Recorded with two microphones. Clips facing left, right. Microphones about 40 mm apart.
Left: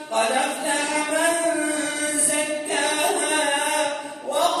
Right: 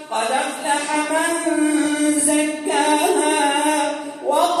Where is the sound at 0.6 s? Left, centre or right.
Right.